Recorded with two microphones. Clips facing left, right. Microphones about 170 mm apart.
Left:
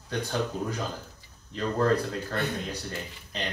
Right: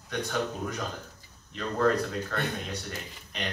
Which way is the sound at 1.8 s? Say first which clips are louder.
Even; 30° left (ahead or behind).